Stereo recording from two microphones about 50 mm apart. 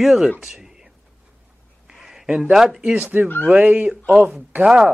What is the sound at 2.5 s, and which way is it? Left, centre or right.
Speech, centre.